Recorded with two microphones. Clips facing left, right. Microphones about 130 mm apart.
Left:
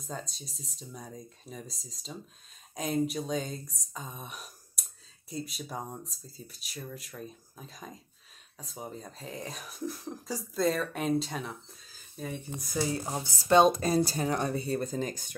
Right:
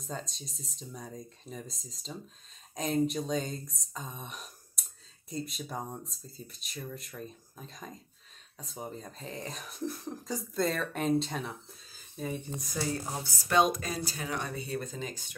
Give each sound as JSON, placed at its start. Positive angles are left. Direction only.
{"t": 0.0, "sound": "speech", "side_deg": 0}
{"t": 12.8, "sound": "speech", "side_deg": 20}